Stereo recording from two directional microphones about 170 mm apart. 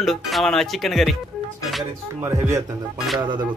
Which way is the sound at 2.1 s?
15° right (ahead or behind).